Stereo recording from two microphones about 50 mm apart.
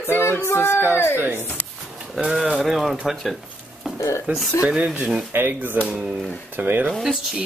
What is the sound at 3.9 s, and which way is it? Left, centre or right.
Speech, left.